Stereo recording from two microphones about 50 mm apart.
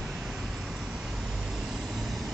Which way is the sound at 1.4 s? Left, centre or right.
Centre.